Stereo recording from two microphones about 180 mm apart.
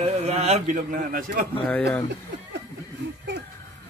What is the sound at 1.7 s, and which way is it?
Speech, 10° left (ahead or behind).